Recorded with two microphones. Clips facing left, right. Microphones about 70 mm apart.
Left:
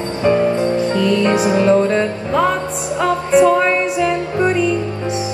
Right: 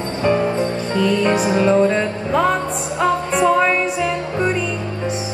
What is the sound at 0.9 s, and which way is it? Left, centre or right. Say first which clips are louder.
Music: right 2 dB; centre.